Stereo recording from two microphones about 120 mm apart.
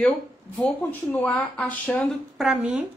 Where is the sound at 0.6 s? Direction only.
10° left (ahead or behind).